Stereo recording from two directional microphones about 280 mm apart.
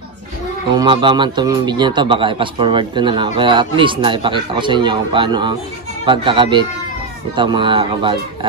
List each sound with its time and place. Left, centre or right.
0.7 s a man's voice: centre